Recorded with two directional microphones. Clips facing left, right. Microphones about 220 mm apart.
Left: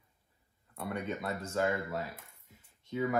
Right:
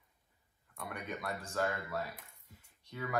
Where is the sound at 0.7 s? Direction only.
25° left (ahead or behind).